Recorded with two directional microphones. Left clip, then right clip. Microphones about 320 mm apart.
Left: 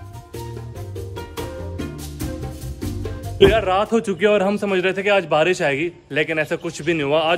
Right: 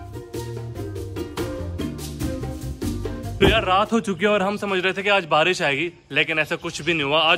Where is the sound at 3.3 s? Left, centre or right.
Centre.